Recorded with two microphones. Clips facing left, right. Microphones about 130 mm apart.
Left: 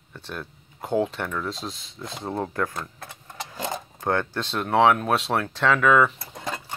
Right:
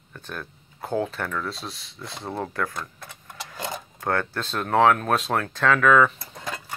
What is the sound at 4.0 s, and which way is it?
Speech, 15° left (ahead or behind).